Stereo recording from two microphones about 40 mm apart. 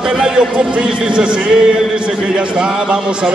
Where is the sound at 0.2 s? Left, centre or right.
Right.